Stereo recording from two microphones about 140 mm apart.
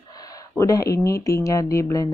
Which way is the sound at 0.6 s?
25° left (ahead or behind).